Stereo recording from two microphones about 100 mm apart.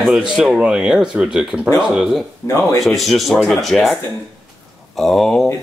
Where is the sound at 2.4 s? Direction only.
30° left (ahead or behind).